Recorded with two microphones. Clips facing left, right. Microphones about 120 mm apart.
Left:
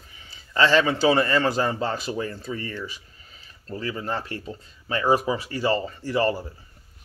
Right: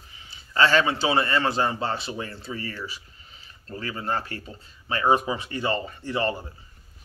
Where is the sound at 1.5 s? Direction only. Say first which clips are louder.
Left 1 dB; 40° left (ahead or behind).